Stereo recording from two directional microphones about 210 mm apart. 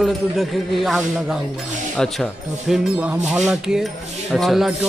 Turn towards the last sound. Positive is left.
turn(degrees=0)  # may be behind; listen again after turning